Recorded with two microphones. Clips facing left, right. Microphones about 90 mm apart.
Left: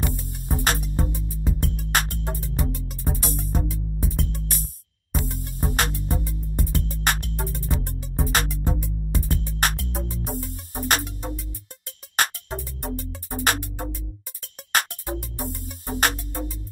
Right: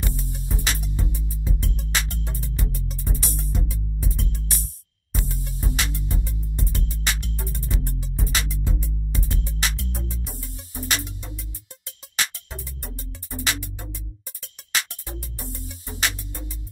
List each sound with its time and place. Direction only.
0.1 s music: 50° left (ahead or behind)